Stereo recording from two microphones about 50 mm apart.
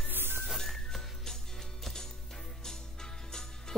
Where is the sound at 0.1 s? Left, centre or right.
Right.